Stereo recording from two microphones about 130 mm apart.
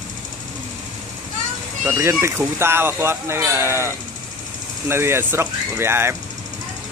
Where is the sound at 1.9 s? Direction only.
20° right (ahead or behind).